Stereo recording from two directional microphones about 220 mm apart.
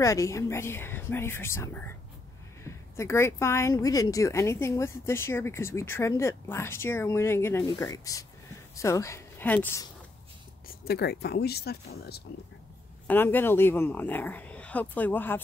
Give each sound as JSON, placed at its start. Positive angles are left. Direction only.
{"t": 0.0, "sound": "a woman's voice", "side_deg": 15}
{"t": 10.9, "sound": "speech", "side_deg": 45}
{"t": 13.0, "sound": "speech", "side_deg": 10}